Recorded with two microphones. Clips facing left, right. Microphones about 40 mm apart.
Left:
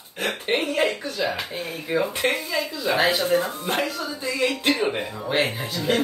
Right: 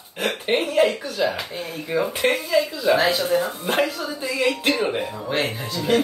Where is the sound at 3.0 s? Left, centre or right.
Left.